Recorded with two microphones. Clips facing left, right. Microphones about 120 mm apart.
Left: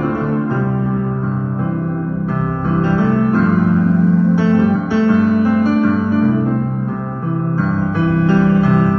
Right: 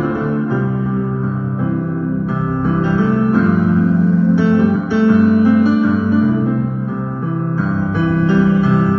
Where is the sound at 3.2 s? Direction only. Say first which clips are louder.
Even; 45° left (ahead or behind).